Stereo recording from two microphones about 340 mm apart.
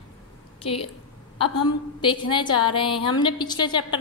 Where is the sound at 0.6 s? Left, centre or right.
Centre.